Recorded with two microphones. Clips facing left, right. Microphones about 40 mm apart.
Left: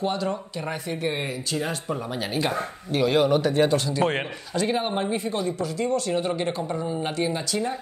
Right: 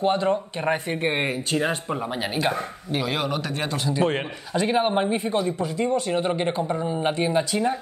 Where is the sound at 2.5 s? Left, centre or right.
Centre.